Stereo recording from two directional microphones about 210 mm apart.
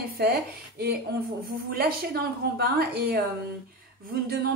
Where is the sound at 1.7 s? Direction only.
45° right (ahead or behind).